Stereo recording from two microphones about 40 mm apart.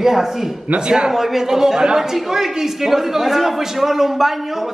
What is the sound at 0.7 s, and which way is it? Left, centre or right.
Speech, right.